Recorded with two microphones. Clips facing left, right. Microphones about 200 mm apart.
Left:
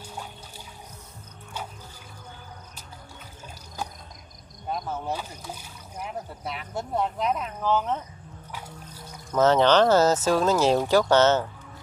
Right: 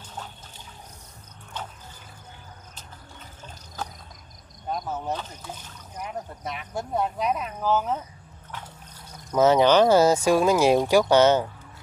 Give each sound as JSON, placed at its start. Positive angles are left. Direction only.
{"t": 5.0, "sound": "speech", "side_deg": 10}
{"t": 8.5, "sound": "music", "side_deg": 10}
{"t": 9.3, "sound": "speech", "side_deg": -10}